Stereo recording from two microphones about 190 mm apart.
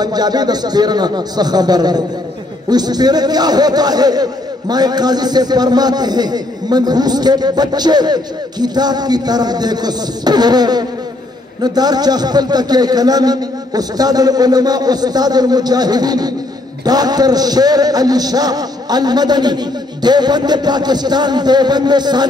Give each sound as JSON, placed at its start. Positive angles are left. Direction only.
{"t": 0.0, "sound": "speech", "side_deg": -20}